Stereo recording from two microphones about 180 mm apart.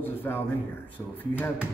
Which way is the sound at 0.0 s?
10° left (ahead or behind).